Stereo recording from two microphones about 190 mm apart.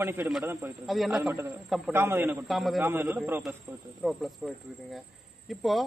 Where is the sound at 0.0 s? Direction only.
10° right (ahead or behind).